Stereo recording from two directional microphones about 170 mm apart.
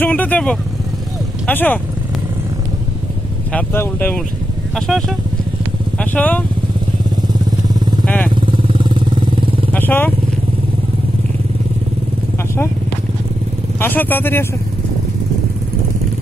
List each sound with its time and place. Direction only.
0.0 s speech: 10° left (ahead or behind)
3.5 s speech: 10° left (ahead or behind)
8.0 s vehicle: 10° left (ahead or behind)
8.4 s vehicle: 30° right (ahead or behind)
9.7 s vehicle: 10° left (ahead or behind)
13.7 s speech: 10° left (ahead or behind)